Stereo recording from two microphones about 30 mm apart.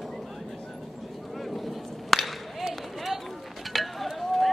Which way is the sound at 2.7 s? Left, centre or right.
Centre.